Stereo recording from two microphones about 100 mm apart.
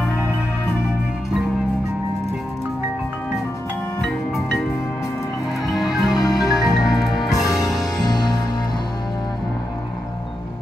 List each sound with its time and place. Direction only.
5.7 s music: centre (ahead or behind)
6.2 s music: 40° left (ahead or behind)
6.5 s music: centre (ahead or behind)
8.0 s music: 40° left (ahead or behind)